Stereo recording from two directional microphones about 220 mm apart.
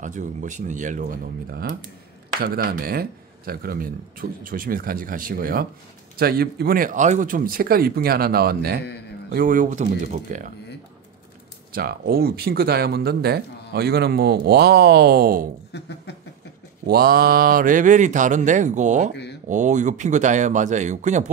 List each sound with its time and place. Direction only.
0.0 s speech: 35° right (ahead or behind)
11.7 s speech: 45° right (ahead or behind)
15.7 s a sound: 50° left (ahead or behind)
16.8 s speech: 45° right (ahead or behind)